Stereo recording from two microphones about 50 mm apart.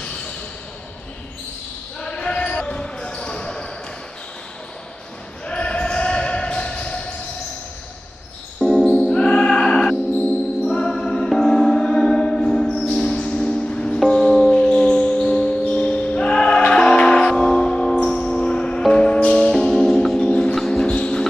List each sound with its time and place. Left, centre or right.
2.0 s basketball bounce: centre
5.5 s basketball bounce: left
8.6 s music: centre
9.1 s music: centre
14.5 s music: centre
20.2 s music: centre
20.5 s music: centre
20.8 s music: left